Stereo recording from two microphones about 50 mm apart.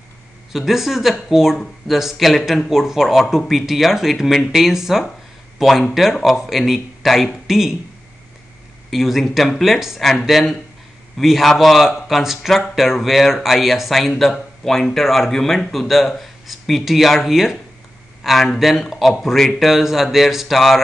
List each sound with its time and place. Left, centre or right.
0.5 s speech: centre
8.9 s speech: centre
19.7 s speech: centre